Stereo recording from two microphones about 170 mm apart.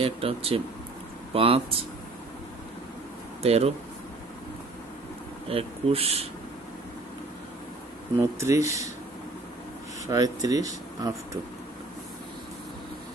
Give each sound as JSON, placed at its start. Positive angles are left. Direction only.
{"t": 0.0, "sound": "speech", "side_deg": -35}
{"t": 3.4, "sound": "speech", "side_deg": -35}
{"t": 5.5, "sound": "speech", "side_deg": -35}
{"t": 8.2, "sound": "speech", "side_deg": -15}
{"t": 10.0, "sound": "speech", "side_deg": -20}